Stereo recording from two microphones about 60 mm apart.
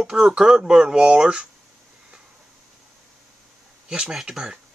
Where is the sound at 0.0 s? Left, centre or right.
Centre.